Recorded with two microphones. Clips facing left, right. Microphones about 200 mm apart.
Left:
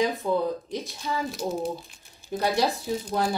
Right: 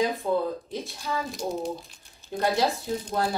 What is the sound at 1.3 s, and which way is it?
Speech, 5° left (ahead or behind).